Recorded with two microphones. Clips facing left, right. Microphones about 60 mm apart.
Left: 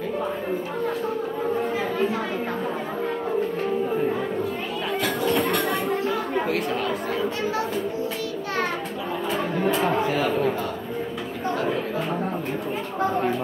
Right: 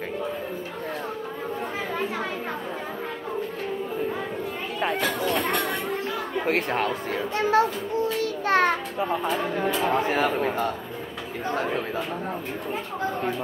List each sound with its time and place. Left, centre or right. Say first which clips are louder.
5.4 s chatter: left 3 dB; centre
6.4 s speech: even; right
8.2 s children playing: right 5 dB; right
10.0 s speech: left 1 dB; right